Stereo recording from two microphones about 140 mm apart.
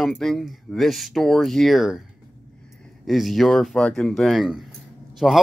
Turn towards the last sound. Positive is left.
turn(degrees=0)  # may be behind; listen again after turning